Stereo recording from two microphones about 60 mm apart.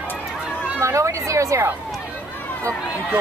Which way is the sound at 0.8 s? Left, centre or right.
Right.